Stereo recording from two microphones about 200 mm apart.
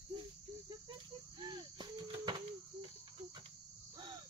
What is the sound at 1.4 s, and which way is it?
Cricket, 20° right (ahead or behind).